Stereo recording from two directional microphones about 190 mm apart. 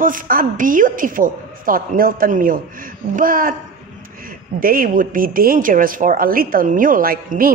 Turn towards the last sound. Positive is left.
turn(degrees=-50)  # may be behind; listen again after turning